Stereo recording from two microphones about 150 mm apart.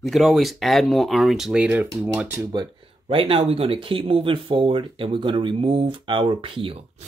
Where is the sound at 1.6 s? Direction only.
15° right (ahead or behind).